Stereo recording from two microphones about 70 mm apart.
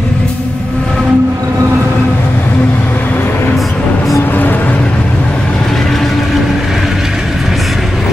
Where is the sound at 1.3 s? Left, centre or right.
Right.